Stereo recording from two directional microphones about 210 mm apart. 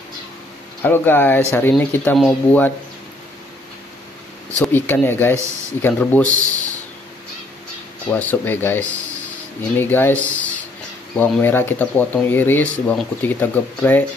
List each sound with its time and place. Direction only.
0.8 s speech: 10° left (ahead or behind)
4.7 s speech: 10° left (ahead or behind)
6.2 s a man's voice: 40° right (ahead or behind)
8.1 s speech: 10° left (ahead or behind)